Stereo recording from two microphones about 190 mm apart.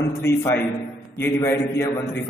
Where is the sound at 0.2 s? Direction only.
15° left (ahead or behind).